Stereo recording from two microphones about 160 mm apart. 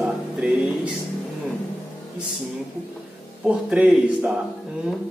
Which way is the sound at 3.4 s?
5° right (ahead or behind).